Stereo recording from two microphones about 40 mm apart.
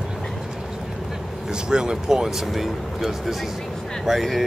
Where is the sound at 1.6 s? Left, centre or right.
Centre.